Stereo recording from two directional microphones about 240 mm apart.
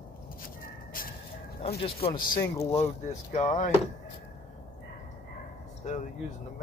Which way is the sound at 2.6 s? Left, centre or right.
Left.